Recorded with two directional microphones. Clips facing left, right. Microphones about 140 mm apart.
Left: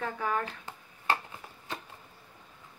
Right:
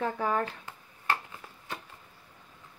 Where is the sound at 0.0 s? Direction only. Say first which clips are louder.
Right 3 dB; 30° right (ahead or behind).